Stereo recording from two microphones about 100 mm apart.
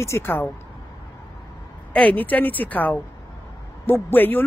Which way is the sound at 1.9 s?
15° left (ahead or behind).